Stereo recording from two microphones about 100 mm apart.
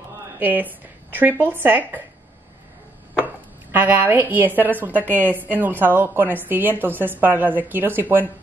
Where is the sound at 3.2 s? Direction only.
15° right (ahead or behind).